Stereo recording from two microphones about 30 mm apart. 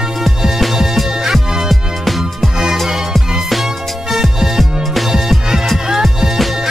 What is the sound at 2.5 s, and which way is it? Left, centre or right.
Music, centre.